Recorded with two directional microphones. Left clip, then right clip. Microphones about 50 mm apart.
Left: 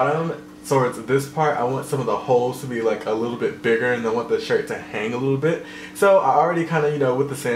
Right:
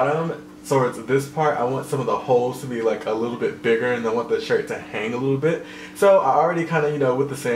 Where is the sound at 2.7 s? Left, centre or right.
Centre.